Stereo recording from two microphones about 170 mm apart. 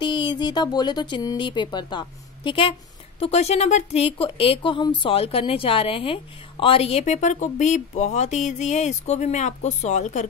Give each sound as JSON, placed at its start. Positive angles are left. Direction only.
{"t": 0.0, "sound": "speech", "side_deg": 25}
{"t": 3.2, "sound": "a woman's voice", "side_deg": 40}